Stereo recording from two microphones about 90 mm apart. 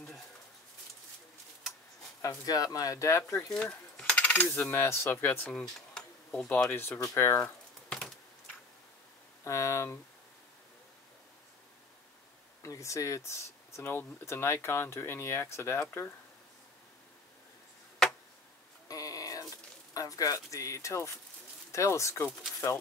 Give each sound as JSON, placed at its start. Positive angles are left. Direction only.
{"t": 2.2, "sound": "speech", "side_deg": 40}
{"t": 3.6, "sound": "coin", "side_deg": 15}
{"t": 4.5, "sound": "speech", "side_deg": 25}
{"t": 5.5, "sound": "speech", "side_deg": 5}
{"t": 6.7, "sound": "speech", "side_deg": 25}
{"t": 9.4, "sound": "speech", "side_deg": 35}
{"t": 12.6, "sound": "speech", "side_deg": 35}
{"t": 18.9, "sound": "a sound", "side_deg": 40}
{"t": 19.9, "sound": "speech", "side_deg": 40}